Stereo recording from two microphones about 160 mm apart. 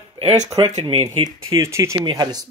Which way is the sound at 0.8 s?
30° right (ahead or behind).